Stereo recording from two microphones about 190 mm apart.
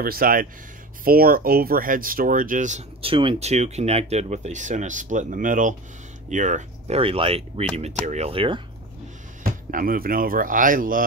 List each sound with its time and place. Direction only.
0.0 s speech: 50° right (ahead or behind); by 8.6 s 25° right (ahead or behind)
9.4 s speech: 50° right (ahead or behind)